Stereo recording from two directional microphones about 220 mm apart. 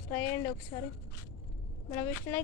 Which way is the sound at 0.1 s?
10° left (ahead or behind).